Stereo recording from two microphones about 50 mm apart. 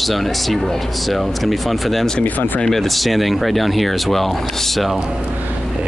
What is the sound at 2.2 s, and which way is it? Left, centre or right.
Speech, left.